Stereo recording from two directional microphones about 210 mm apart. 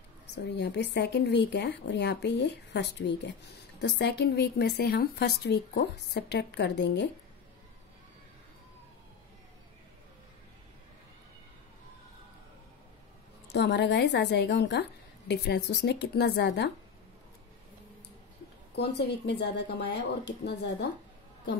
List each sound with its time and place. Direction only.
0.3 s a woman's voice: 55° left (ahead or behind)
13.5 s a woman's voice: 55° left (ahead or behind)
18.8 s a woman's voice: 55° left (ahead or behind)